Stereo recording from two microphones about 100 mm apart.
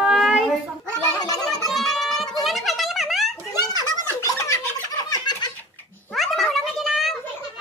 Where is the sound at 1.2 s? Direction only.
40° left (ahead or behind).